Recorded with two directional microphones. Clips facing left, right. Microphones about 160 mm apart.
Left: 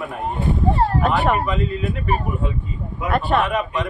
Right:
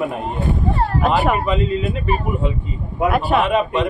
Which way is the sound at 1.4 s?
20° right (ahead or behind).